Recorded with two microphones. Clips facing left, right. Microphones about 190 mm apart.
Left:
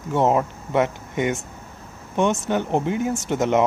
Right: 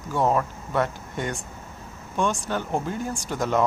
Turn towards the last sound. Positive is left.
turn(degrees=20)  # may be behind; listen again after turning